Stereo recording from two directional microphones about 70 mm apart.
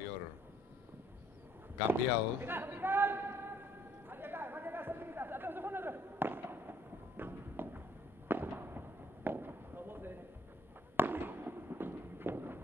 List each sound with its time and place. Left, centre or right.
1.9 s a man's voice: right
4.1 s chatter: right
8.3 s fireworks: right